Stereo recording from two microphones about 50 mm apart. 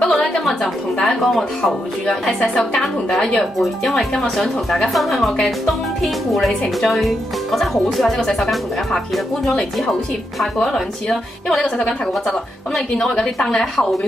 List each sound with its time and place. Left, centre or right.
0.1 s music: centre
0.9 s a woman's voice: centre
3.5 s a woman's voice: centre
6.8 s a woman's voice: centre
10.4 s a woman's voice: centre